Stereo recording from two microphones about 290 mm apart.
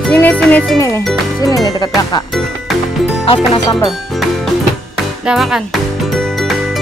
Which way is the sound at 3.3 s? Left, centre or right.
Centre.